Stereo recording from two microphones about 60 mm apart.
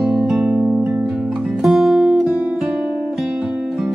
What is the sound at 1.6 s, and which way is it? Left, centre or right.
Music, centre.